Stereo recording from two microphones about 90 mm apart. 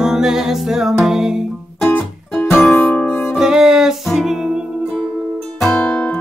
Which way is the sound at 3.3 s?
5° right (ahead or behind).